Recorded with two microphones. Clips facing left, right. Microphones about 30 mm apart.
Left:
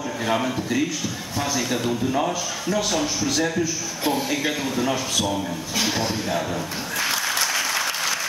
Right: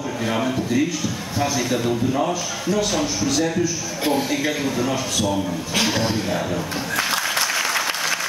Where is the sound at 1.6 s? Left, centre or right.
Centre.